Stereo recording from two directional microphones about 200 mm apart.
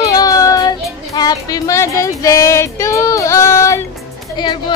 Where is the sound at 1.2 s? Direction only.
20° left (ahead or behind).